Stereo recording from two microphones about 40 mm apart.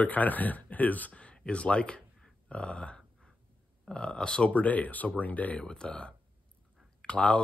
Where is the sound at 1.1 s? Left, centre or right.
Left.